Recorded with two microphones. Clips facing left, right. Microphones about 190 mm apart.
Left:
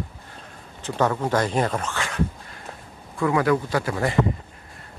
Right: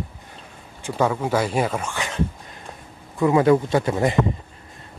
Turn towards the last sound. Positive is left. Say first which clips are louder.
# right 4 dB
turn(degrees=-20)  # may be behind; listen again after turning